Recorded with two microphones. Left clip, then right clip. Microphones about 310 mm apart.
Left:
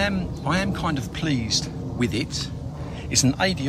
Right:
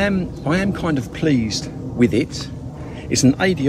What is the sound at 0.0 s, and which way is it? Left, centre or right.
Speech, centre.